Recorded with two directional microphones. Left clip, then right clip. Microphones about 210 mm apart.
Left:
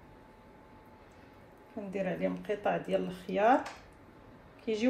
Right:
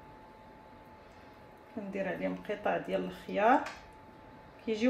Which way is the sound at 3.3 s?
35° left (ahead or behind).